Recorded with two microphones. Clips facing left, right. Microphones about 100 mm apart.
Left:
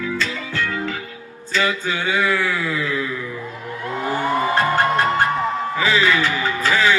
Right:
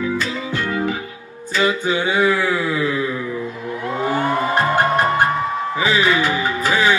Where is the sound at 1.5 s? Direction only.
20° right (ahead or behind).